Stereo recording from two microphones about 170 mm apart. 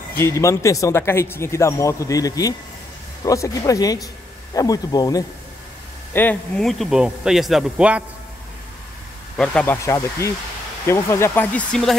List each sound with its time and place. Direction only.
0.1 s speech: 15° left (ahead or behind)
6.1 s a man's voice: 10° left (ahead or behind)
9.4 s speech: 5° left (ahead or behind)